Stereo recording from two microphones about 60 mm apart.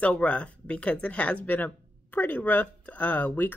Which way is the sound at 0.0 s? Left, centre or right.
Left.